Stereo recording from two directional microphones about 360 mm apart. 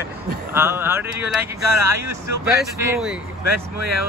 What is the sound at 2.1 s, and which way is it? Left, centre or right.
Speech, right.